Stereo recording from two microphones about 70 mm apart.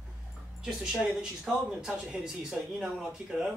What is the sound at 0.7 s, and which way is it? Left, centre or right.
Speech, centre.